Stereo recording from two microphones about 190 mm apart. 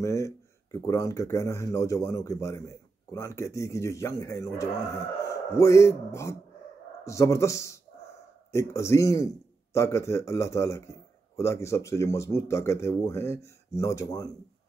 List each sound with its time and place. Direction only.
0.0 s a man's voice: 15° left (ahead or behind)